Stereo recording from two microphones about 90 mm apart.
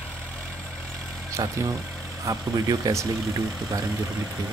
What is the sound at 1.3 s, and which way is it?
Speech, 35° right (ahead or behind).